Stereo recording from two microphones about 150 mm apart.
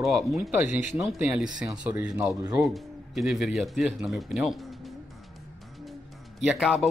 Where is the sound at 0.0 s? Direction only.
Centre (ahead or behind).